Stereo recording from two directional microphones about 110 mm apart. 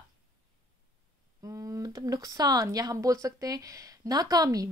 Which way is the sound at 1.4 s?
30° right (ahead or behind).